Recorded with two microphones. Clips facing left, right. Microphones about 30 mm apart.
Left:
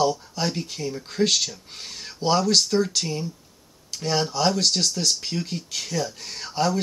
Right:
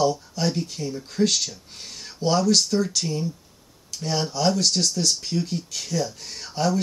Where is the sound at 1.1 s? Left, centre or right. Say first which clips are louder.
Even; left.